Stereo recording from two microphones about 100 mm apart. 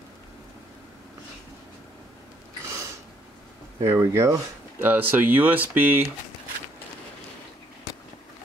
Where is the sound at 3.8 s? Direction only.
30° right (ahead or behind).